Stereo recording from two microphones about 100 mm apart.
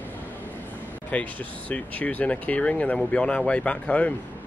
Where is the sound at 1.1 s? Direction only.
15° left (ahead or behind).